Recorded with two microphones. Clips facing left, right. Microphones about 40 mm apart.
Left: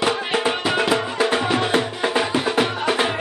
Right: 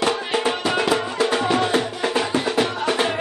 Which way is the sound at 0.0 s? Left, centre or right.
Centre.